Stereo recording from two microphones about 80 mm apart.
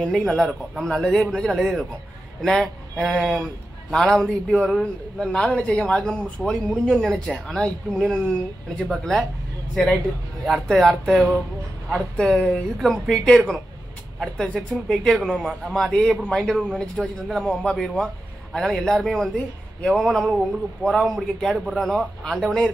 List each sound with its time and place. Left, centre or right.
0.0 s a man's voice: centre
8.0 s a man's voice: centre
10.4 s a man's voice: centre
12.7 s a man's voice: centre